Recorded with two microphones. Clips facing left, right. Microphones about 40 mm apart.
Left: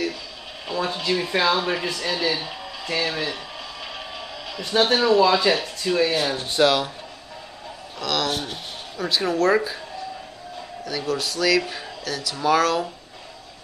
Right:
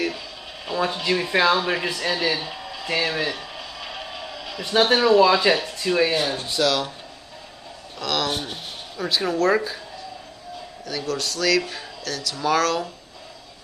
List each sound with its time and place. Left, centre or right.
0.7 s a sound: centre
1.3 s speech: centre
2.9 s a sound: centre
4.7 s speech: centre
6.3 s speech: left
8.0 s speech: centre
10.9 s speech: centre